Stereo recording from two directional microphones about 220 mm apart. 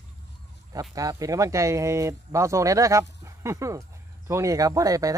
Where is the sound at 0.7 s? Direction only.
15° right (ahead or behind).